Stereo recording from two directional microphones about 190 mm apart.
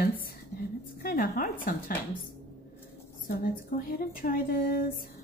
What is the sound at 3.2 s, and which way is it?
Speech, 45° left (ahead or behind).